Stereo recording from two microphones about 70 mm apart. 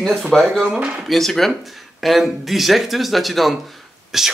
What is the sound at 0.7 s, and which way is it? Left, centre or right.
Speech, centre.